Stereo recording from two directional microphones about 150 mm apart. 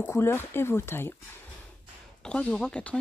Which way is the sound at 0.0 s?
15° left (ahead or behind).